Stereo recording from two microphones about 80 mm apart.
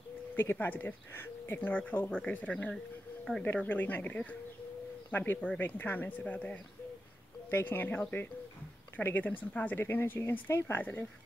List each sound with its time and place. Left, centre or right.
0.4 s speech: left
7.4 s speech: left